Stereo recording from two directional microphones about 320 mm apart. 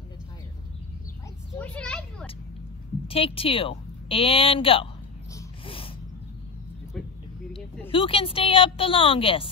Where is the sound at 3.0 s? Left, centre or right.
Centre.